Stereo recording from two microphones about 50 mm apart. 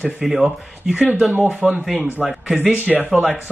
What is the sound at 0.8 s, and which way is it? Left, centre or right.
Speech, right.